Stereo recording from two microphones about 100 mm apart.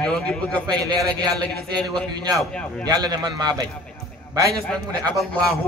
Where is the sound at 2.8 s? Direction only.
45° right (ahead or behind).